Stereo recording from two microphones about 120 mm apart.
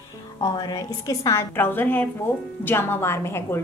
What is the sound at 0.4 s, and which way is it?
A woman's voice, 30° left (ahead or behind).